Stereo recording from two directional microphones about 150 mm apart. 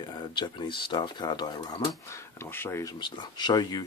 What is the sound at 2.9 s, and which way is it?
Speech, 30° left (ahead or behind).